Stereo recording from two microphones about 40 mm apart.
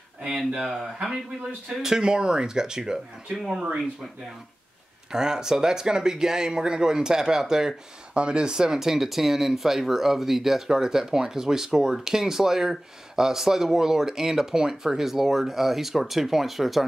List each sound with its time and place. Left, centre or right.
0.5 s speech: centre
5.1 s speech: centre
8.1 s speech: right; by 16.8 s centre